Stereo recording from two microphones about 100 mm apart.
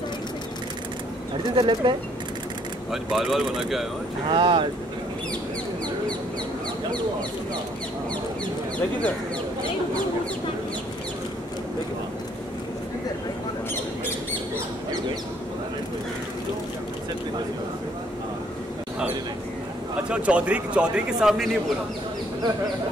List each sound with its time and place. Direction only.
1.5 s speech: 50° right (ahead or behind)
2.9 s speech: 5° right (ahead or behind)
4.3 s speech: 60° right (ahead or behind)
20.1 s speech: 10° right (ahead or behind)